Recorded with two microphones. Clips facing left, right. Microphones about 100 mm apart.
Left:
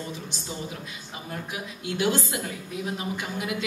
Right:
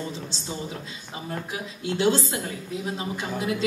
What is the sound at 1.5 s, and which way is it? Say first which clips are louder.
A woman's voice: right 2 dB; 25° right (ahead or behind).